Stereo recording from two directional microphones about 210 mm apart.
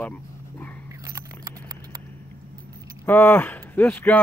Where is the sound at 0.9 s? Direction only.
15° right (ahead or behind).